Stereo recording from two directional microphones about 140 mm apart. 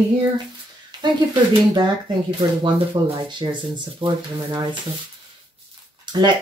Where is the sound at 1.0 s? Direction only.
30° right (ahead or behind).